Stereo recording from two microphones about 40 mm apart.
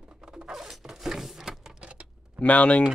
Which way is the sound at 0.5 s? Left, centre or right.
Centre.